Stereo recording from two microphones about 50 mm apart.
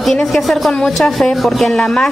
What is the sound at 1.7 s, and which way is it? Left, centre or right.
Speech, centre.